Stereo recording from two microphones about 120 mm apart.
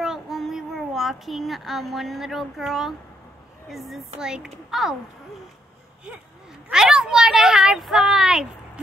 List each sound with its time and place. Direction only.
0.0 s a child's voice: 5° right (ahead or behind)
6.7 s speech: 5° right (ahead or behind)